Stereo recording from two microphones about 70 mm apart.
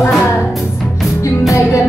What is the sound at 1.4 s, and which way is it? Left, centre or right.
Music, left.